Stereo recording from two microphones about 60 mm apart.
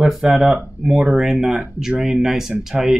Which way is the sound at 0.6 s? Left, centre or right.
Centre.